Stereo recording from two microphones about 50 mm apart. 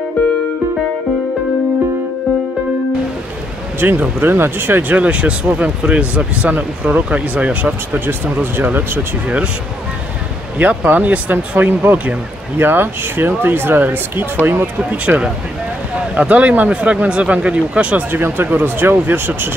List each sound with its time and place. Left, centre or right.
3.8 s speech: right
4.9 s speech: right
7.9 s speech: right
10.6 s speech: right
12.5 s speech: right
14.9 s speech: right
17.9 s speech: right